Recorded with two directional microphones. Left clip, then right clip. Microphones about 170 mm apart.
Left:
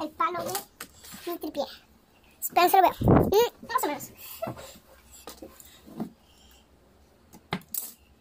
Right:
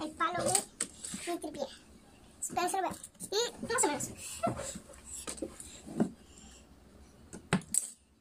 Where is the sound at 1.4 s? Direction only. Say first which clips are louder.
Left 7 dB; 40° left (ahead or behind).